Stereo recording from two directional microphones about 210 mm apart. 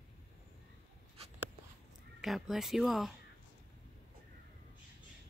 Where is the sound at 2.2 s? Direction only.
Centre (ahead or behind).